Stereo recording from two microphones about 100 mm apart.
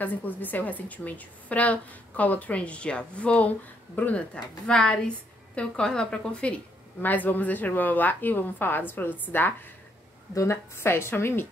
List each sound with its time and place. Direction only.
0.0 s a woman's voice: 20° left (ahead or behind)